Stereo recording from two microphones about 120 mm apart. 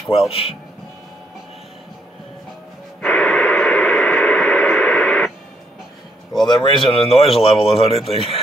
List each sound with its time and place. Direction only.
0.3 s speech: 55° left (ahead or behind)
3.0 s radio: 10° left (ahead or behind)
6.4 s speech: 40° left (ahead or behind)